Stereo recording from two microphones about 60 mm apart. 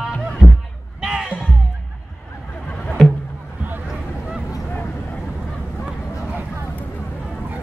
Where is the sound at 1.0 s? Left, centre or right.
Centre.